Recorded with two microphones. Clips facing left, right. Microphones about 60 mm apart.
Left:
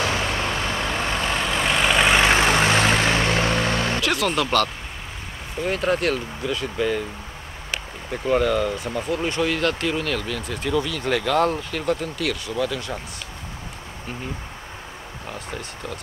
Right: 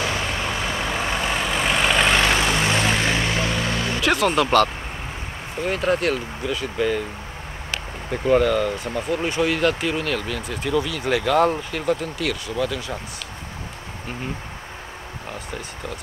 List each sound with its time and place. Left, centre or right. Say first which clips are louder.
0.1 s vehicle: left 1 dB; centre
0.5 s vehicle: even; centre
2.2 s vehicle: left 2 dB; centre
2.7 s vehicle: left 2 dB; left
3.3 s vehicle: left 2 dB; left
3.7 s vehicle: left 2 dB; left
4.0 s vehicle: right 3 dB; centre
4.4 s speech: right 4 dB; centre
5.6 s speech: right 1 dB; centre
8.1 s speech: right 2 dB; centre